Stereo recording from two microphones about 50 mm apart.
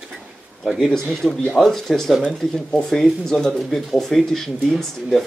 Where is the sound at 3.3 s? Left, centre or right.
Centre.